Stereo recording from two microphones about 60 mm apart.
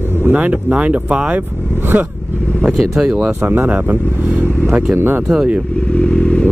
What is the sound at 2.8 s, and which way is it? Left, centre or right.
Speech, centre.